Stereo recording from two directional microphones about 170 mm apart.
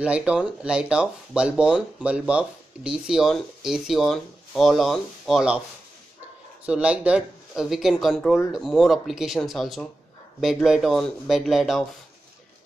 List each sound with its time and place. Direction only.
0.0 s speech: 5° right (ahead or behind)
6.6 s speech: 5° right (ahead or behind)